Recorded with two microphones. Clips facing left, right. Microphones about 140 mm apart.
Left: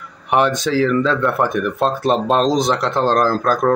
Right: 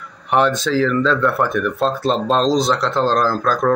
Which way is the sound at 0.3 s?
15° left (ahead or behind).